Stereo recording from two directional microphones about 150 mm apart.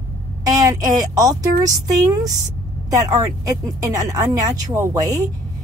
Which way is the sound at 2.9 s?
25° right (ahead or behind).